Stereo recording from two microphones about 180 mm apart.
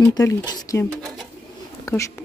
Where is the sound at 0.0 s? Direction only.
15° left (ahead or behind).